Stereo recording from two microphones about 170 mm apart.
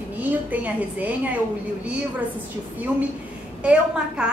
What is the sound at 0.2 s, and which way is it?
A woman's voice, 10° right (ahead or behind).